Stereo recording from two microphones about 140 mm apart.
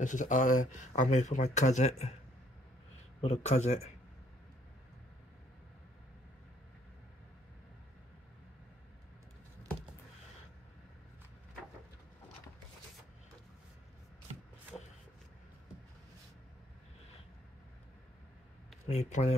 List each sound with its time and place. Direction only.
0.0 s speech: 65° left (ahead or behind)
3.2 s a man's voice: 50° left (ahead or behind)
18.9 s speech: 55° left (ahead or behind)